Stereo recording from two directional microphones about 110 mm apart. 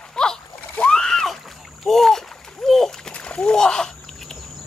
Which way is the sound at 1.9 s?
5° left (ahead or behind).